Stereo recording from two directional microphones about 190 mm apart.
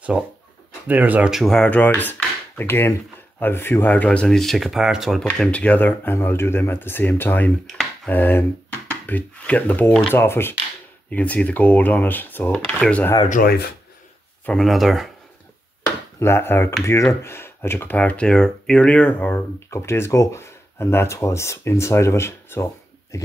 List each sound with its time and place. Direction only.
0.8 s speech: 10° right (ahead or behind); by 13.2 s 10° left (ahead or behind)
13.3 s speech: 50° left (ahead or behind)
14.4 s speech: centre (ahead or behind)
16.2 s speech: 10° left (ahead or behind)